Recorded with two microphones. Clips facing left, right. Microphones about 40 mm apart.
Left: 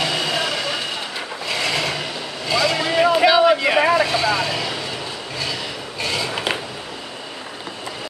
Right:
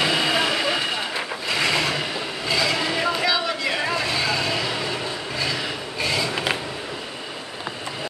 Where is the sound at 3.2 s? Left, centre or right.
Left.